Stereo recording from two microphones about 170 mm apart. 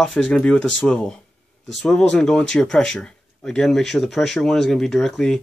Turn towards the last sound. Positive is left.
turn(degrees=0)  # may be behind; listen again after turning